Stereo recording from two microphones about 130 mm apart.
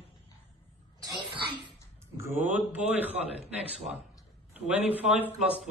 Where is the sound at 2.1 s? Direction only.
15° right (ahead or behind).